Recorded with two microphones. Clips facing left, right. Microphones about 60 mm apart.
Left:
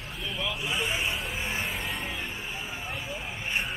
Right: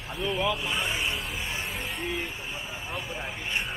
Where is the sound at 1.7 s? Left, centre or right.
Centre.